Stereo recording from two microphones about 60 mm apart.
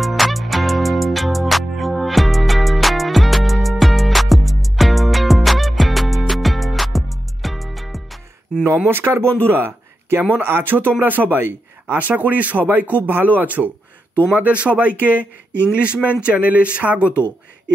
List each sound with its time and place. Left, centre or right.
0.0 s music: centre
8.7 s speech: right
17.0 s speech: left